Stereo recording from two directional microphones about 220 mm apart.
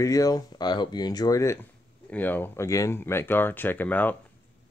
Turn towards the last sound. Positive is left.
turn(degrees=10)  # may be behind; listen again after turning